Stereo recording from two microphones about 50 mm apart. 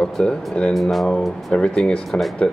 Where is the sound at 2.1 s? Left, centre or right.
Centre.